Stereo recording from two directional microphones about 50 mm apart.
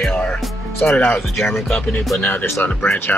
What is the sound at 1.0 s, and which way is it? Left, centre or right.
Speech, left.